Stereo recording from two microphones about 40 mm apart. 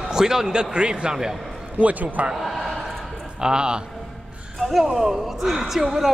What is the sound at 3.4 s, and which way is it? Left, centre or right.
Speech, right.